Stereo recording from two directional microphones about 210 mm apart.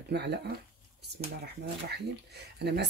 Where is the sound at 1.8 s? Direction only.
50° right (ahead or behind).